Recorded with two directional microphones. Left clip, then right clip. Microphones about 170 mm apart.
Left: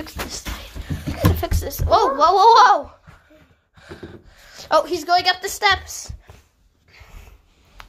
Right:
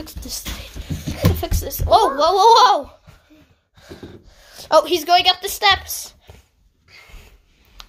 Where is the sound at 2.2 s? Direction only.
15° right (ahead or behind).